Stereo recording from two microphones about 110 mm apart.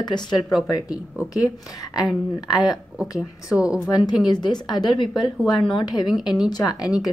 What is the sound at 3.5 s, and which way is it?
Speech, 10° right (ahead or behind).